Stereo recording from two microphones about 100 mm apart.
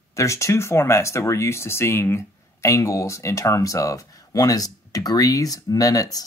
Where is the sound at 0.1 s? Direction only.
30° left (ahead or behind).